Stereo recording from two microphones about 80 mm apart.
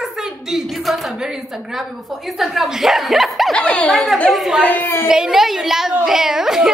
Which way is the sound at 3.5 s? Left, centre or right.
Centre.